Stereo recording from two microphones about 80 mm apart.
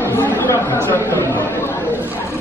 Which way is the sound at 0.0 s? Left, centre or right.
Left.